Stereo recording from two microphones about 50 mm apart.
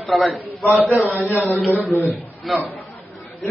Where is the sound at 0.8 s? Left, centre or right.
Right.